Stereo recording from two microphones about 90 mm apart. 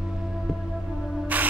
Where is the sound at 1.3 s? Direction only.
15° right (ahead or behind).